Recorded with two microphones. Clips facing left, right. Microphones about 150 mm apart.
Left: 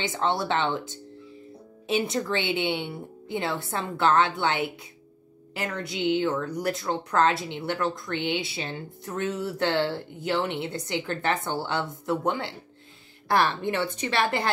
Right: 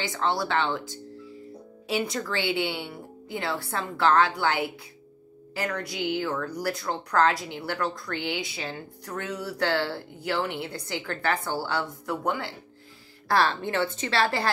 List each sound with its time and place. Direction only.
0.0 s a woman's voice: 25° left (ahead or behind)